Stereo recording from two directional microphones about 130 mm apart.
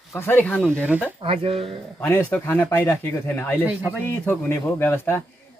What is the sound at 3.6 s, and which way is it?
Speech, 10° right (ahead or behind).